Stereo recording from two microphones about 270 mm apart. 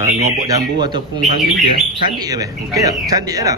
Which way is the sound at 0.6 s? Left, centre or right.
Centre.